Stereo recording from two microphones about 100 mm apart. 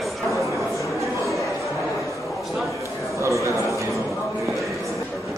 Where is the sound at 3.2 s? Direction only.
30° right (ahead or behind).